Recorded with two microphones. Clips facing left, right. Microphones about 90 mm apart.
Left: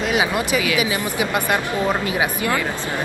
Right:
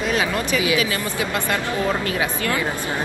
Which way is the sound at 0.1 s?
15° left (ahead or behind).